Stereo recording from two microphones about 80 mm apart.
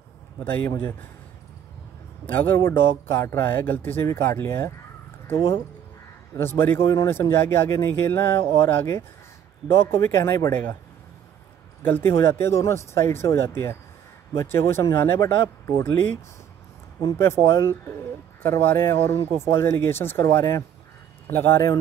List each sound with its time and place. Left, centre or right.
0.7 s a man's voice: left
2.5 s speech: left
6.3 s speech: left
11.8 s speech: left
17.0 s speech: left
18.4 s speech: left